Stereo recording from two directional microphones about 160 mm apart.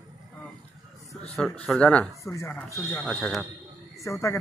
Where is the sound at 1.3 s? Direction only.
5° left (ahead or behind).